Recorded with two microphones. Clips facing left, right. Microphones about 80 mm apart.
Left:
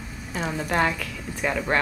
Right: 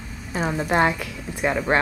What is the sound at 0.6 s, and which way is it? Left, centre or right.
A woman's voice, right.